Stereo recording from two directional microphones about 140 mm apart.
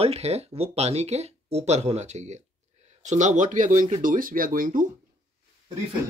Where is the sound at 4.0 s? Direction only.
80° right.